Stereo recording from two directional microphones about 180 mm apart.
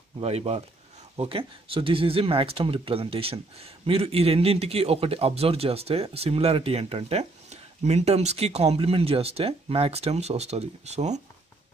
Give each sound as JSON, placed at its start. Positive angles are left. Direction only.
{"t": 0.2, "sound": "speech", "side_deg": -35}